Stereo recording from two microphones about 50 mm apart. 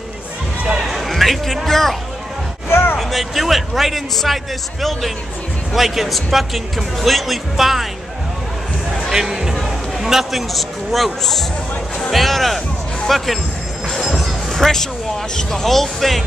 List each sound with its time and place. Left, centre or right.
0.8 s music: centre
2.7 s a sound: left
3.0 s speech: centre
5.7 s speech: centre
9.1 s music: centre
15.3 s speech: centre